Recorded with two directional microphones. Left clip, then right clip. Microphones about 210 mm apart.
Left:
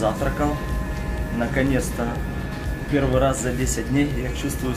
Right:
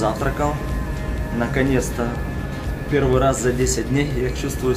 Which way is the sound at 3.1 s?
5° right (ahead or behind).